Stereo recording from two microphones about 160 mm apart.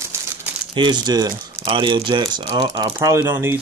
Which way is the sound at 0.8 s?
25° right (ahead or behind).